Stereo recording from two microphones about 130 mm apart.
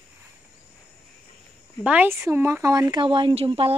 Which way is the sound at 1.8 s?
10° right (ahead or behind).